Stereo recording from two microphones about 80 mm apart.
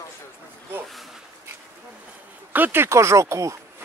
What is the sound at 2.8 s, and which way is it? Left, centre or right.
Speech, right.